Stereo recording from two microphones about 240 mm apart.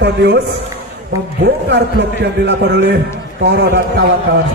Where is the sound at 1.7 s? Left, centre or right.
Right.